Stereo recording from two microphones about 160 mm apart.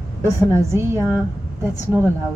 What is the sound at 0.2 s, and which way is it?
A woman's voice, 20° right (ahead or behind).